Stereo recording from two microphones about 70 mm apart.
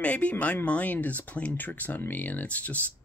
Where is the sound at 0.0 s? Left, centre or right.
Centre.